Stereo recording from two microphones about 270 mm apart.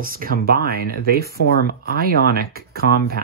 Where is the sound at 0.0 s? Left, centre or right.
Right.